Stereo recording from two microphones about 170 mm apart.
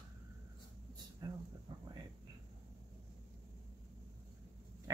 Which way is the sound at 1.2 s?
25° right (ahead or behind).